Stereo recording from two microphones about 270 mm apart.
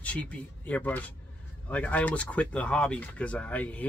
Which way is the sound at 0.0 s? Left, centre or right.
Centre.